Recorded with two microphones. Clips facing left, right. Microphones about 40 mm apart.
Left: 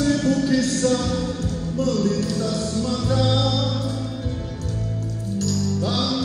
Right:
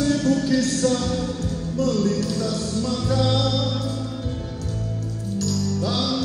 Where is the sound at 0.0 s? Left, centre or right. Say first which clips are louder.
Left 1 dB; left.